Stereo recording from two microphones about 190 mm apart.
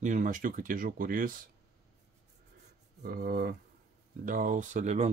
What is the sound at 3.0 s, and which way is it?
Speech, 50° right (ahead or behind).